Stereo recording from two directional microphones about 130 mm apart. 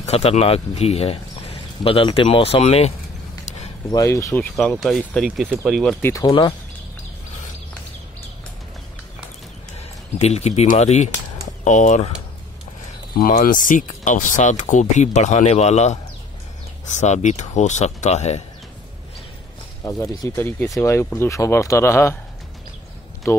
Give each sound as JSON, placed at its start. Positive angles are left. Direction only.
{"t": 0.0, "sound": "speech", "side_deg": 55}
{"t": 3.4, "sound": "a sound", "side_deg": 55}
{"t": 3.9, "sound": "speech", "side_deg": 25}
{"t": 4.7, "sound": "speech", "side_deg": 0}
{"t": 6.0, "sound": "speech", "side_deg": 25}
{"t": 9.8, "sound": "a sound", "side_deg": 55}
{"t": 10.7, "sound": "speech", "side_deg": 60}
{"t": 11.6, "sound": "speech", "side_deg": 70}
{"t": 13.2, "sound": "speech", "side_deg": 90}
{"t": 17.0, "sound": "speech", "side_deg": 60}
{"t": 19.8, "sound": "speech", "side_deg": 25}
{"t": 23.3, "sound": "speech", "side_deg": 20}